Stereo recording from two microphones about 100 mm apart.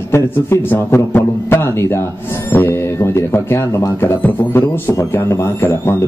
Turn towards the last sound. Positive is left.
turn(degrees=25)  # may be behind; listen again after turning